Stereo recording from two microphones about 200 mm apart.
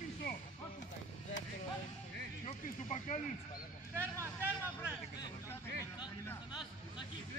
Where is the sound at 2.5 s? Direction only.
35° left (ahead or behind).